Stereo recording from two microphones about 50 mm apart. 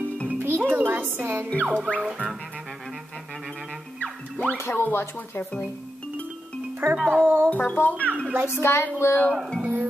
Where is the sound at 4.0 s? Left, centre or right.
Left.